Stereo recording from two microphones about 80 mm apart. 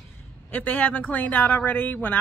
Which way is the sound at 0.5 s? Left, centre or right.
Left.